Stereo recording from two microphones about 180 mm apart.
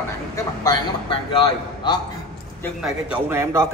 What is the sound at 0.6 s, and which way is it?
A man's voice, 30° left (ahead or behind).